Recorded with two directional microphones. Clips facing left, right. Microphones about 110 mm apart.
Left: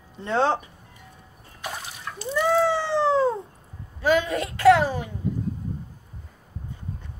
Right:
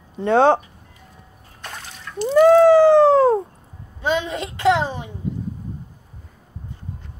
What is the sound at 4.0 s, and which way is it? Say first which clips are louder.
A woman's voice: left 1 dB; 20° right (ahead or behind).